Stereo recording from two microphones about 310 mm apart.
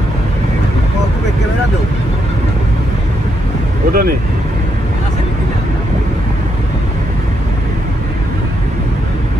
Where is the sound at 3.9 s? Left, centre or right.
Right.